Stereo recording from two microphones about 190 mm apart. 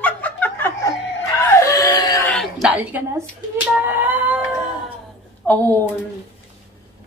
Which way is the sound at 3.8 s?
10° right (ahead or behind).